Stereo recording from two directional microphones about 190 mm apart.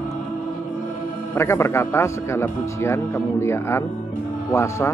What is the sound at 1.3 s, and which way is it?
Speech, 15° left (ahead or behind).